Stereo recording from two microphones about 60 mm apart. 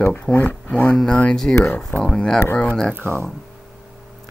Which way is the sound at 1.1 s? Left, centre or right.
Centre.